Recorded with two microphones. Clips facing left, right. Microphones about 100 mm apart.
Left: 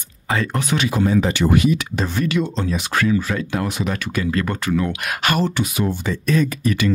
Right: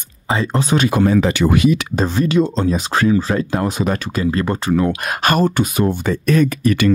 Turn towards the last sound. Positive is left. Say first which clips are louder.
# right 5 dB
turn(degrees=-60)  # may be behind; listen again after turning